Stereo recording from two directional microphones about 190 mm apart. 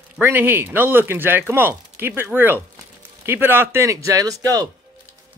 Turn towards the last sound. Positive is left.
turn(degrees=-20)  # may be behind; listen again after turning